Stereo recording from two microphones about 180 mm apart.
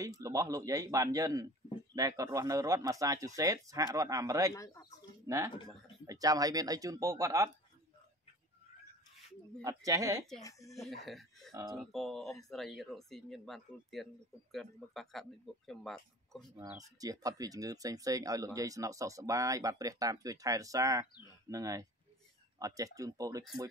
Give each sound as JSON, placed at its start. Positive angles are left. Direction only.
{"t": 0.0, "sound": "speech", "side_deg": -20}
{"t": 9.6, "sound": "speech", "side_deg": -20}
{"t": 10.7, "sound": "speech", "side_deg": 0}
{"t": 11.5, "sound": "speech", "side_deg": -15}
{"t": 11.8, "sound": "speech", "side_deg": 0}
{"t": 16.7, "sound": "speech", "side_deg": -20}